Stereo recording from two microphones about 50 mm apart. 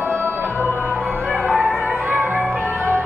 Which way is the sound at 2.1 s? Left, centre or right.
Right.